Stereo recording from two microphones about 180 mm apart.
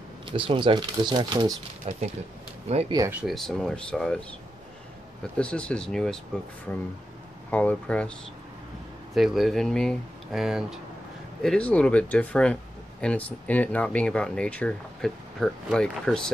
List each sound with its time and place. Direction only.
0.2 s speech: 25° right (ahead or behind)
1.9 s speech: 35° right (ahead or behind)
2.9 s speech: 15° right (ahead or behind)
3.2 s speech: centre (ahead or behind)
5.4 s speech: 5° left (ahead or behind)
7.5 s speech: 10° left (ahead or behind)
9.1 s speech: centre (ahead or behind)